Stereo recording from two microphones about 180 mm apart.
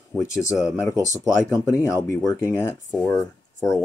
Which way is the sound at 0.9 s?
20° right (ahead or behind).